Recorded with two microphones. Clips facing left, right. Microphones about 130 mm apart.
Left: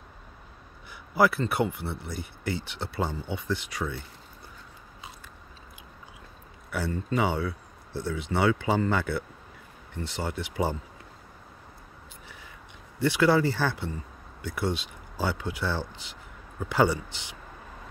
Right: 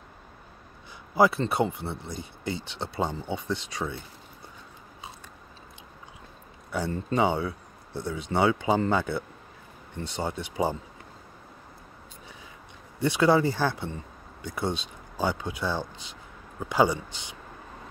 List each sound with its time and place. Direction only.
1.1 s speech: 20° right (ahead or behind)
6.9 s speech: 30° right (ahead or behind)
7.2 s speech: 20° right (ahead or behind)
13.0 s speech: 20° right (ahead or behind)